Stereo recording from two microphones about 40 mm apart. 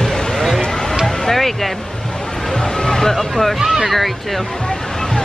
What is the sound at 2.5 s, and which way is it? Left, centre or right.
Music, centre.